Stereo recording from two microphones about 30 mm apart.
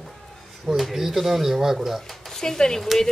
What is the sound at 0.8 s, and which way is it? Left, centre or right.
Speech, centre.